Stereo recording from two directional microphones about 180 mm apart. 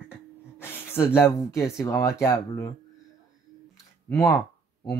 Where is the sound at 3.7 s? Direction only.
15° left (ahead or behind).